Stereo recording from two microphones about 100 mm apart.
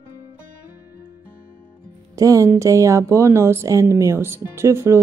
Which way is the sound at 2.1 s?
35° right (ahead or behind).